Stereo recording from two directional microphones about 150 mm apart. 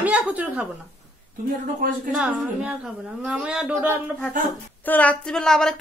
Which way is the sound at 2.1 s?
5° right (ahead or behind).